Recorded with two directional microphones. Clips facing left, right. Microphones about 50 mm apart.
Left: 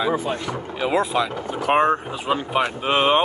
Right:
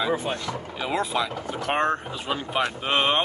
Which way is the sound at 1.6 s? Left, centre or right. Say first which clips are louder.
Left 6 dB; centre.